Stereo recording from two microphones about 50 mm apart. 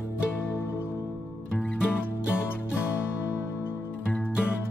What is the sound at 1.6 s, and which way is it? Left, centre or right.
Music, left.